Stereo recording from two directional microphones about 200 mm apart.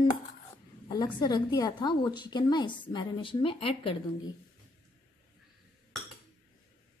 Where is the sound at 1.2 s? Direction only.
20° left (ahead or behind).